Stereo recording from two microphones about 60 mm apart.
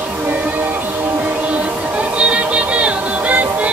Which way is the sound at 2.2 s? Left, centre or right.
Centre.